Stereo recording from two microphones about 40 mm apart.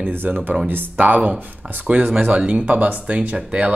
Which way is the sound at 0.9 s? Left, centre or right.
Right.